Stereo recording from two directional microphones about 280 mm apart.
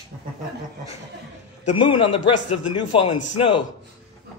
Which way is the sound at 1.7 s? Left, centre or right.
Centre.